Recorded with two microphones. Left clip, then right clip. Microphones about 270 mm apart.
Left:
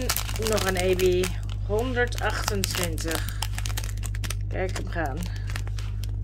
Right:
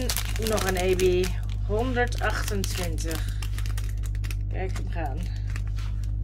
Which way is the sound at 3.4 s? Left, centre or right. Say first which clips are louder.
Left 7 dB; left.